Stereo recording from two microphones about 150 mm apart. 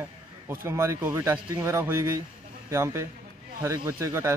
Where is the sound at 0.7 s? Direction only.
20° right (ahead or behind).